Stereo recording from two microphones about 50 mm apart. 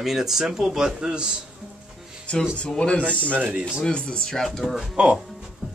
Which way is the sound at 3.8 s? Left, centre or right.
Centre.